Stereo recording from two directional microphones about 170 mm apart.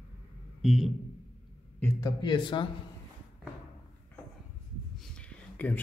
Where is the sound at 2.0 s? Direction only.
25° left (ahead or behind).